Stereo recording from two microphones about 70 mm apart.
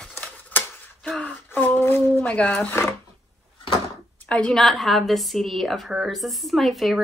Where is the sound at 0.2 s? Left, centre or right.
Left.